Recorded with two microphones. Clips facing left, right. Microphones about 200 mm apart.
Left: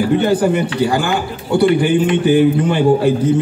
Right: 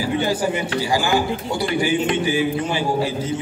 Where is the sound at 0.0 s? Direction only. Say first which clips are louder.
Left 7 dB; 60° left (ahead or behind).